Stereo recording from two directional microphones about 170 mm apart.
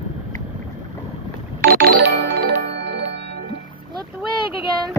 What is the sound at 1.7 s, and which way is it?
Music, 70° right (ahead or behind).